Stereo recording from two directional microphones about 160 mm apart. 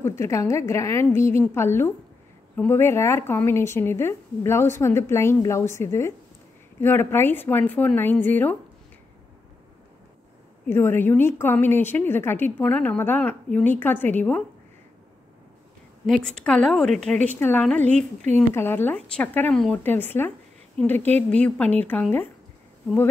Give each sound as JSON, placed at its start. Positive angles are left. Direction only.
{"t": 0.0, "sound": "a woman's voice", "side_deg": 15}
{"t": 10.7, "sound": "a woman's voice", "side_deg": 15}
{"t": 16.3, "sound": "a woman's voice", "side_deg": 5}